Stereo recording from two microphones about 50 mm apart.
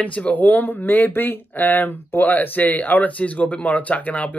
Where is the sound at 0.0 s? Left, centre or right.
Left.